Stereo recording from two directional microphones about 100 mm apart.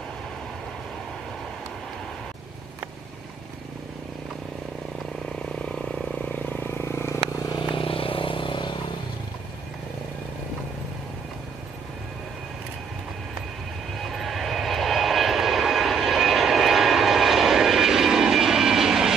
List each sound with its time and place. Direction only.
5.4 s vehicle: 10° left (ahead or behind); by 7.2 s 25° left (ahead or behind)
7.3 s vehicle: 40° left (ahead or behind)
7.7 s vehicle: 65° left (ahead or behind)
13.9 s vehicle: centre (ahead or behind)